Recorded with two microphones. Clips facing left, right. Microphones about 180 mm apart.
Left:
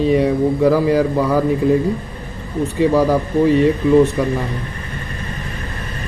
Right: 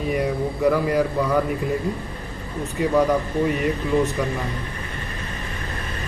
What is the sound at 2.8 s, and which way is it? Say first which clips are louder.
Speech: left 4 dB; 30° left (ahead or behind).